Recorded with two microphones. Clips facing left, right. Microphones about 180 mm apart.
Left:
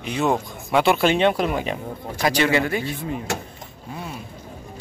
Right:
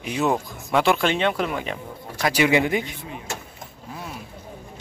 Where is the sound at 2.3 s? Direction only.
15° right (ahead or behind).